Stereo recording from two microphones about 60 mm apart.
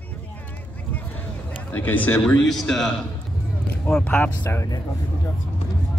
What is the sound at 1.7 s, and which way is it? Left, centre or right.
Speech, left.